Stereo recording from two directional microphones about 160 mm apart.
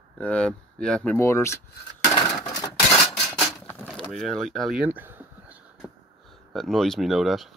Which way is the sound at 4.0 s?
Centre (ahead or behind).